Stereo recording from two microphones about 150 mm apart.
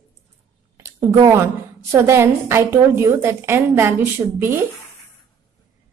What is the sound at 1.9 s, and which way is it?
A woman's voice, 15° right (ahead or behind).